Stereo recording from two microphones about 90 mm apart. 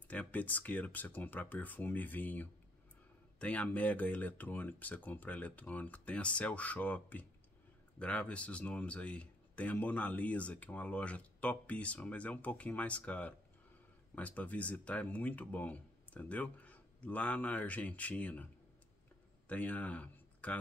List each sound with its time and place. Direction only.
0.1 s speech: 15° left (ahead or behind)